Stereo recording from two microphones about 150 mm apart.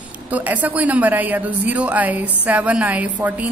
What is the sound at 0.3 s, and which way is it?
Speech, 10° right (ahead or behind).